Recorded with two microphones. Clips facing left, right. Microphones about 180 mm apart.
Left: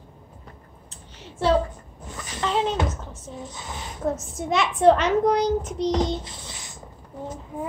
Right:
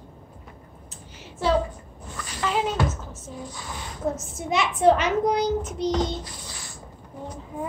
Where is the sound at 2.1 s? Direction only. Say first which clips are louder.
Left 1 dB; 20° left (ahead or behind).